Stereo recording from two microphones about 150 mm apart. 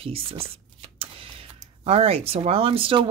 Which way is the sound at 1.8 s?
40° right (ahead or behind).